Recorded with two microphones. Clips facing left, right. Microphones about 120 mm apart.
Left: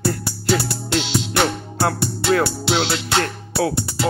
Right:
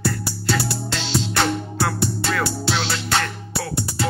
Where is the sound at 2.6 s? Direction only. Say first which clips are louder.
Left 3 dB; 20° left (ahead or behind).